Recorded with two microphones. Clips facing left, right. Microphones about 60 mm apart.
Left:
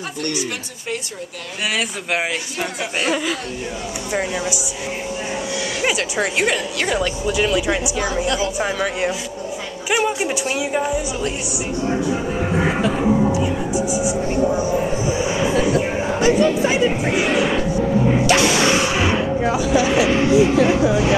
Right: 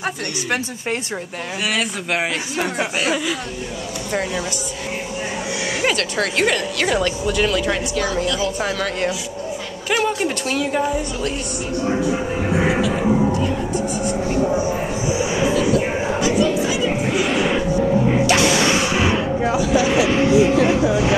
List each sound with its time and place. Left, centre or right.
1.8 s speech: centre
5.9 s speech: centre
15.5 s chatter: left